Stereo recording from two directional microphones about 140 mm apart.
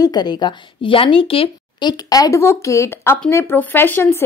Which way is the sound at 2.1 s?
25° left (ahead or behind).